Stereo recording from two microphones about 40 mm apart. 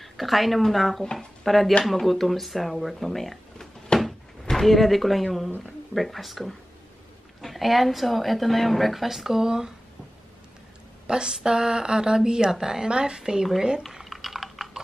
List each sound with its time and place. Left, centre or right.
0.0 s a woman's voice: centre
4.0 s drawer open or close: centre
5.9 s a woman's voice: centre
11.1 s speech: centre
14.0 s typing: centre